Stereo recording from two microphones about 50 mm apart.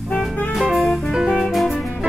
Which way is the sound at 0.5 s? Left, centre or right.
Centre.